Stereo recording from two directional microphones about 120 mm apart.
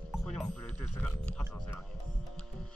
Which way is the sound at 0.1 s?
5° left (ahead or behind).